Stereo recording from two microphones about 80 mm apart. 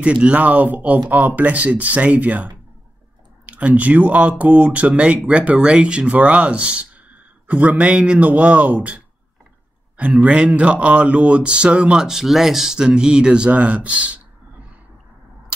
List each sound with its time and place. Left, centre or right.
0.0 s speech: centre